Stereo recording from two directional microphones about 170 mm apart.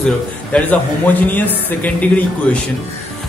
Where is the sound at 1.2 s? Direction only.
10° left (ahead or behind).